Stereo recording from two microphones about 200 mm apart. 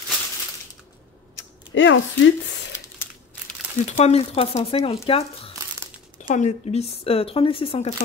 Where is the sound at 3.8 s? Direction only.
30° left (ahead or behind).